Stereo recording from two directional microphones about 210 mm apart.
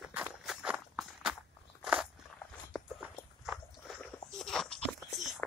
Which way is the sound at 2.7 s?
5° right (ahead or behind).